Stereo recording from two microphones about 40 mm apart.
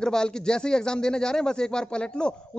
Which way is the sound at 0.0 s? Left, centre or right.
Centre.